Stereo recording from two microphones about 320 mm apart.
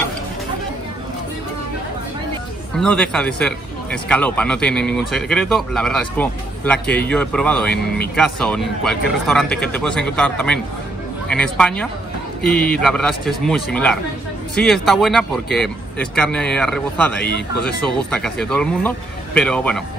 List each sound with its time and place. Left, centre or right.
2.8 s speech: centre